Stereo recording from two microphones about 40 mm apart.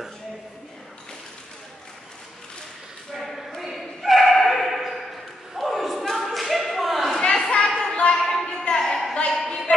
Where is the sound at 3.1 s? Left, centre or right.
Centre.